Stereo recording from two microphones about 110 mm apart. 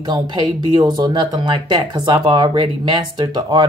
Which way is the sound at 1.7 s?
40° right (ahead or behind).